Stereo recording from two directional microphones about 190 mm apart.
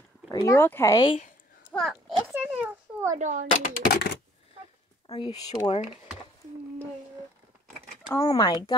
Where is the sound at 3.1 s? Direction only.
40° right (ahead or behind).